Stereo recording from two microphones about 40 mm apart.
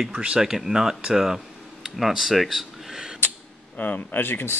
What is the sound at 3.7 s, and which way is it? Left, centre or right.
Speech, left.